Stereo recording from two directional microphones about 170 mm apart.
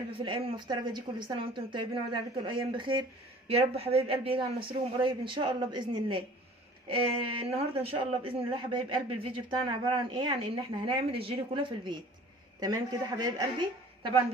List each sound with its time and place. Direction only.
0.2 s a man's voice: 25° right (ahead or behind)